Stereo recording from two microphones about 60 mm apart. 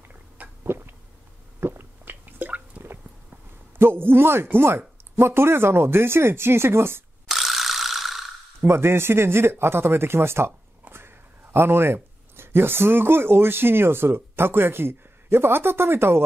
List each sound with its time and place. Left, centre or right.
0.7 s a sound: right
1.6 s squish: right
3.7 s speech: right
7.2 s ratchet: centre
8.5 s speech: right